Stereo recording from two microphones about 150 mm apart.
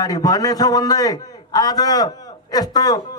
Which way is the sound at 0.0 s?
25° left (ahead or behind).